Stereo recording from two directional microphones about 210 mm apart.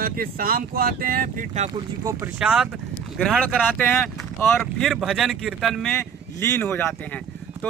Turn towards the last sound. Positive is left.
turn(degrees=10)  # may be behind; listen again after turning